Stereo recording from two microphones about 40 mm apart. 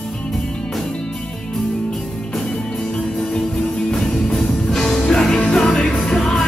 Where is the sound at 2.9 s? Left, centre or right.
Centre.